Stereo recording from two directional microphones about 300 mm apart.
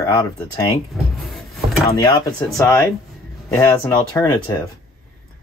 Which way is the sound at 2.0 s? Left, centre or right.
Centre.